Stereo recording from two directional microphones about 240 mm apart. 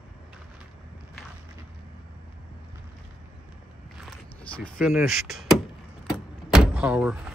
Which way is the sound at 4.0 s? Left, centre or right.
Centre.